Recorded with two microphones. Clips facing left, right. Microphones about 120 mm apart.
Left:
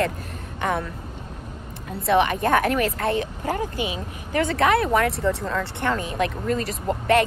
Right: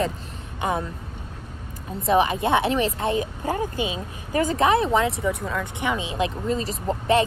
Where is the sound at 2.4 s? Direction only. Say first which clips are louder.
Left 1 dB; 20° right (ahead or behind).